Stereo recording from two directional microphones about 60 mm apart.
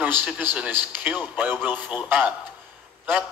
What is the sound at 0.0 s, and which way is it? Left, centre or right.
A man's voice, right.